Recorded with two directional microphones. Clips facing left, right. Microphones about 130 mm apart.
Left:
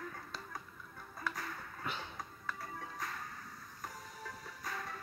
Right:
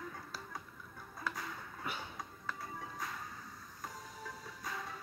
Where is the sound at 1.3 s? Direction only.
15° right (ahead or behind).